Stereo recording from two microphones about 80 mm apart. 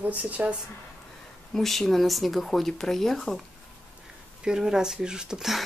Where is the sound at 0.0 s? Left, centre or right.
Centre.